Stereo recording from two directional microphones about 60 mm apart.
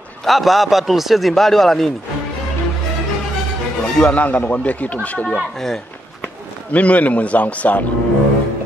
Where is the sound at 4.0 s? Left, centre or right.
Left.